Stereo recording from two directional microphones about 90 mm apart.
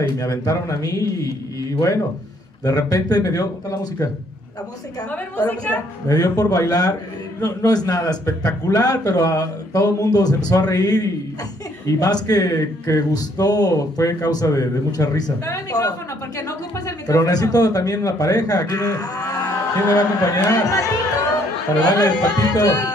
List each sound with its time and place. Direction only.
0.0 s a man's voice: 45° left (ahead or behind)
2.6 s a man's voice: 40° left (ahead or behind)
5.1 s a woman's voice: 20° left (ahead or behind)
6.0 s a man's voice: 40° left (ahead or behind)
21.8 s a man's voice: 45° left (ahead or behind)